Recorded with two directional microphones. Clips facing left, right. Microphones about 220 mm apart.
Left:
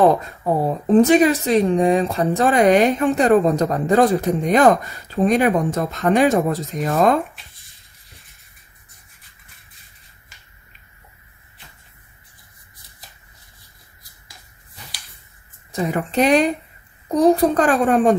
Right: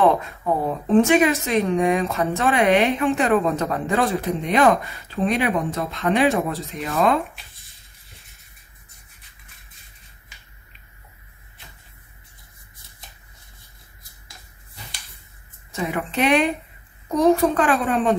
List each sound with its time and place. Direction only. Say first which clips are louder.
0.0 s speech: left 3 dB; 35° left (ahead or behind)
7.2 s a sound: left 3 dB; centre (ahead or behind)
15.7 s speech: left 4 dB; 35° left (ahead or behind)